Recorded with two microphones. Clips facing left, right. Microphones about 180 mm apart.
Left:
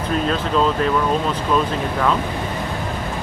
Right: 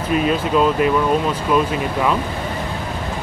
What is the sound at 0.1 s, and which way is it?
Speech, 10° right (ahead or behind).